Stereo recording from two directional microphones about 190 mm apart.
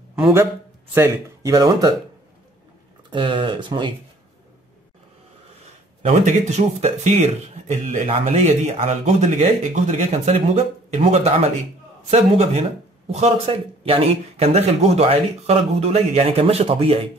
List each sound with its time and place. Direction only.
0.1 s a man's voice: 10° right (ahead or behind)
3.1 s speech: 25° right (ahead or behind)
6.0 s speech: 35° right (ahead or behind)